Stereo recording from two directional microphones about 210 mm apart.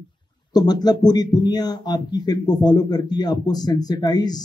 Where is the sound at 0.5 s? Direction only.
20° left (ahead or behind).